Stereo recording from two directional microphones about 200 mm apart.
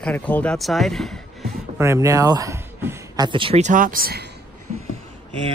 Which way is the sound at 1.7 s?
15° right (ahead or behind).